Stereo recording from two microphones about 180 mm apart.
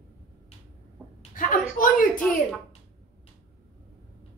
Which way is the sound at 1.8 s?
50° left (ahead or behind).